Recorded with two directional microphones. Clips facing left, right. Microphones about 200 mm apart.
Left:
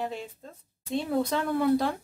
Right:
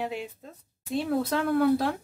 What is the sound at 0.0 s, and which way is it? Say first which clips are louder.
Speech: right 1 dB; 5° right (ahead or behind).